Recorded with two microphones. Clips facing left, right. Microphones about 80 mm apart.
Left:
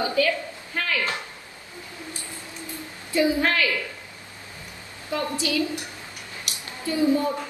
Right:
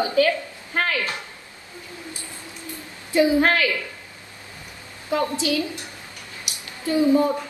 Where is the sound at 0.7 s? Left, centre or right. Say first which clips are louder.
Right 4 dB; right.